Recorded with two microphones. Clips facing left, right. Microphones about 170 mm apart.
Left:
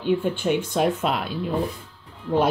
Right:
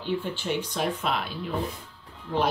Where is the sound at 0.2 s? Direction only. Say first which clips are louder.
Left 7 dB; 50° left (ahead or behind).